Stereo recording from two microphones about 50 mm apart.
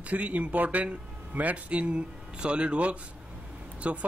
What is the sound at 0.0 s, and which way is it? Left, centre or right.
Speech, right.